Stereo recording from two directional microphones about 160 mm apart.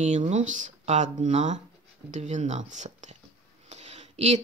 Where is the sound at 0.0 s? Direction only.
45° right (ahead or behind).